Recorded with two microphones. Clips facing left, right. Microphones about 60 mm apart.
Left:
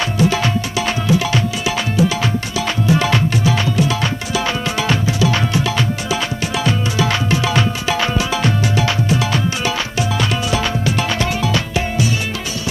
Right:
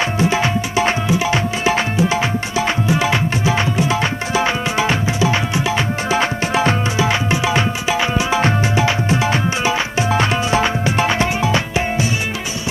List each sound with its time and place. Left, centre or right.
0.2 s tabla: right
1.6 s music: right
6.0 s music: right
7.0 s music: right